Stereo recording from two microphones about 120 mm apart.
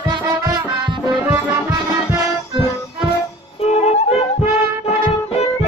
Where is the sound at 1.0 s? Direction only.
25° right (ahead or behind).